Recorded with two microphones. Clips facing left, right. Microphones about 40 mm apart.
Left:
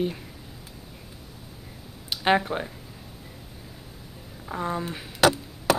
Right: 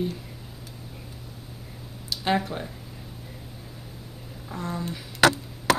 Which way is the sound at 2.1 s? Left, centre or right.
Left.